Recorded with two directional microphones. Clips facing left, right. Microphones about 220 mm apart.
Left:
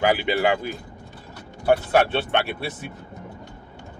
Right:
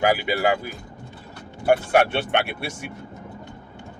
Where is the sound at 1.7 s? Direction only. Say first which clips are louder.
Even; 15° right (ahead or behind).